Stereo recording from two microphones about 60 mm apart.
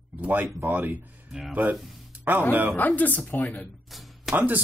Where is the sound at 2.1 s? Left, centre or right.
Right.